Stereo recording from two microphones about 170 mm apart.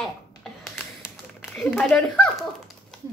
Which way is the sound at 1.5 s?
5° left (ahead or behind).